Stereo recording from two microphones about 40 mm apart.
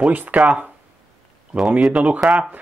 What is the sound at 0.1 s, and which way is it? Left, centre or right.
Speech, right.